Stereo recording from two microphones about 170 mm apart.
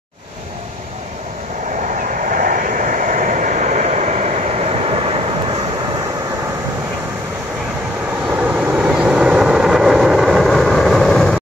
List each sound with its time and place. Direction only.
2.2 s vehicle: 55° right (ahead or behind); by 5.2 s 35° right (ahead or behind)
8.3 s vehicle: 10° right (ahead or behind)